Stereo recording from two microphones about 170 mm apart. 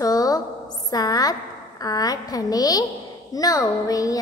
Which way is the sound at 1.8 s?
20° left (ahead or behind).